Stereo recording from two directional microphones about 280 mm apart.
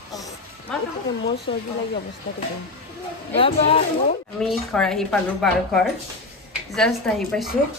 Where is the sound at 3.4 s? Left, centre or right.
Centre.